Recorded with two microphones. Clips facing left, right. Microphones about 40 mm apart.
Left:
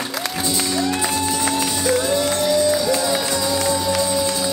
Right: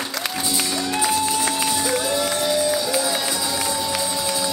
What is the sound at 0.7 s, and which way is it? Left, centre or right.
Music, centre.